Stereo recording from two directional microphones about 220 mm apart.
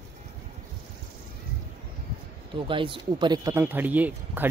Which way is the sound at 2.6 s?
25° right (ahead or behind).